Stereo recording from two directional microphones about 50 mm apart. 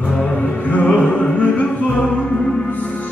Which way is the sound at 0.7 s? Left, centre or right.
Left.